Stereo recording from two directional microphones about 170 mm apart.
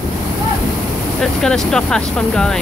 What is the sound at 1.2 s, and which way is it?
Speech, 5° left (ahead or behind).